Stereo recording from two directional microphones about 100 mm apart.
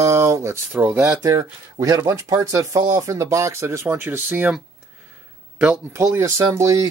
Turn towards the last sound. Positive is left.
turn(degrees=-30)  # may be behind; listen again after turning